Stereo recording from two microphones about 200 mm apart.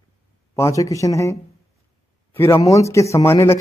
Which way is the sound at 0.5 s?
15° left (ahead or behind).